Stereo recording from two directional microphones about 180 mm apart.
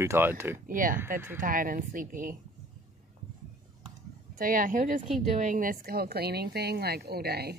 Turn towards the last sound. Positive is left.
turn(degrees=-60)  # may be behind; listen again after turning